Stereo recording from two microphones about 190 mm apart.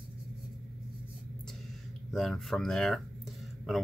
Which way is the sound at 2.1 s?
Centre (ahead or behind).